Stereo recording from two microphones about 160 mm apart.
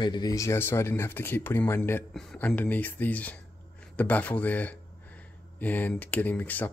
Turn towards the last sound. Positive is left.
turn(degrees=10)  # may be behind; listen again after turning